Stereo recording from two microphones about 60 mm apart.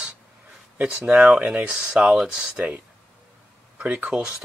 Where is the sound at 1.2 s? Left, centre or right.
Right.